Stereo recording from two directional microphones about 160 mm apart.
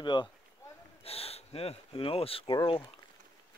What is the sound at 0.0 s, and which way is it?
Speech, 30° left (ahead or behind).